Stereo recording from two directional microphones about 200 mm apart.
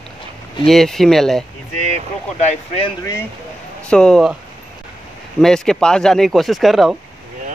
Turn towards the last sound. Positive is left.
turn(degrees=0)  # may be behind; listen again after turning